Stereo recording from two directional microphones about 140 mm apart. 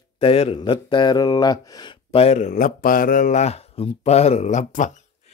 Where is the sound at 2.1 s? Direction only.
45° left (ahead or behind).